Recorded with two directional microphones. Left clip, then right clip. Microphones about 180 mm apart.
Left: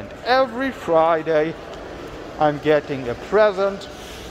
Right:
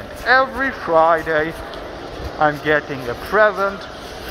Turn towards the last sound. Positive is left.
turn(degrees=30)  # may be behind; listen again after turning